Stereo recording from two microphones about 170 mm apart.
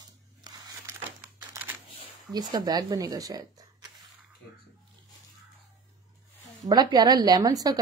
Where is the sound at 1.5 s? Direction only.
10° right (ahead or behind).